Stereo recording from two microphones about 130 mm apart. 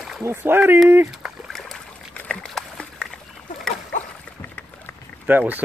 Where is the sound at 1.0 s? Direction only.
5° right (ahead or behind).